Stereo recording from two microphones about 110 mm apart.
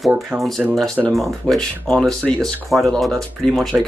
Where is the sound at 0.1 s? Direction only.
5° right (ahead or behind).